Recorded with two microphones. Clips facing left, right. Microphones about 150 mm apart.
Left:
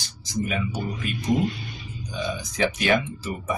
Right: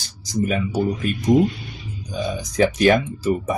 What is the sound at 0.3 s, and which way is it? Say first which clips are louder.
Speech: right 5 dB; 40° right (ahead or behind).